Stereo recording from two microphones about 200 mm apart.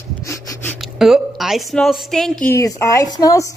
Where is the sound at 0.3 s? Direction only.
Centre (ahead or behind).